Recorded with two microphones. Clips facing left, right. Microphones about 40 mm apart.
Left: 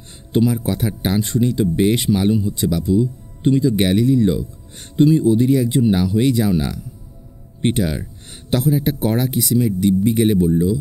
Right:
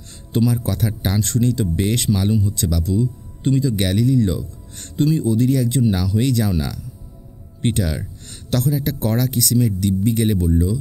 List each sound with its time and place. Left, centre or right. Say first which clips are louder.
0.1 s speech: left 2 dB; left